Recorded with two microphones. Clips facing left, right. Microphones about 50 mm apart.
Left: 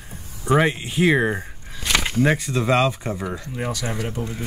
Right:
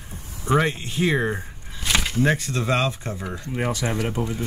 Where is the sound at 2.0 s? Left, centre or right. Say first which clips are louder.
Left 3 dB; left.